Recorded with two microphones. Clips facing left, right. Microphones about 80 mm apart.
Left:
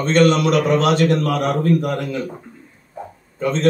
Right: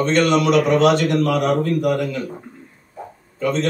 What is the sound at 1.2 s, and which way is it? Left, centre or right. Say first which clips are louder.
A man's voice: right 2 dB; left.